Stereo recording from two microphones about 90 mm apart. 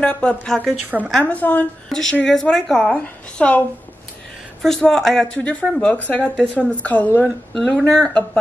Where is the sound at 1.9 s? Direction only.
5° left (ahead or behind).